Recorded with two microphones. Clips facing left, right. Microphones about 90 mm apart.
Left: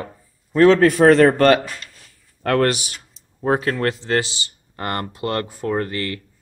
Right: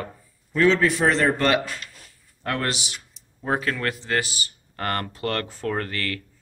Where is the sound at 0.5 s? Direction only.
45° left (ahead or behind).